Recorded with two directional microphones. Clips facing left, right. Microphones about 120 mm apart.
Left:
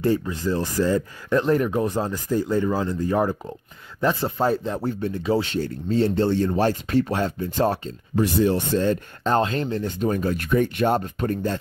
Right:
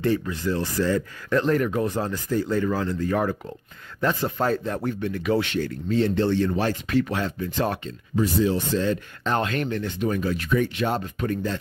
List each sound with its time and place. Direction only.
0.0 s speech: 20° left (ahead or behind)
4.8 s speech: 30° left (ahead or behind)
8.2 s speech: 65° left (ahead or behind); by 11.6 s 40° left (ahead or behind)